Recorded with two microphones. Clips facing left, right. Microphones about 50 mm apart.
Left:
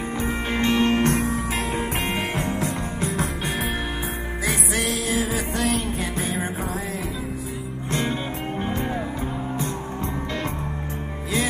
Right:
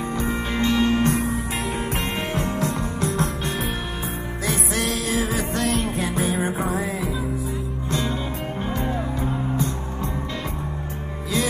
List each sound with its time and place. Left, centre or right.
0.6 s music: left
2.0 s music: left
3.1 s music: centre